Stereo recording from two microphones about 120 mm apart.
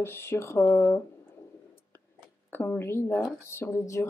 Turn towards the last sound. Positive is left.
turn(degrees=25)  # may be behind; listen again after turning